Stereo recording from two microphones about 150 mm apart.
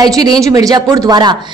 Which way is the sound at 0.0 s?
25° right (ahead or behind).